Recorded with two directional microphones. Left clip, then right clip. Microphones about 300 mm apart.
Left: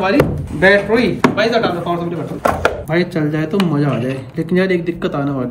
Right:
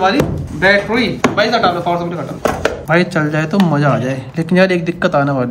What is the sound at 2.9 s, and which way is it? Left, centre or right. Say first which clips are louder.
Speech: right 4 dB; right.